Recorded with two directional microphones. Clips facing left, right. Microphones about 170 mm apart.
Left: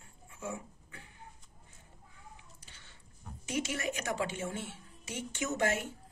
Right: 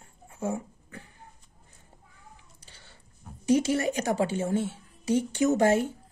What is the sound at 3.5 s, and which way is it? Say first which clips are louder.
A woman's voice: right 11 dB; 35° right (ahead or behind).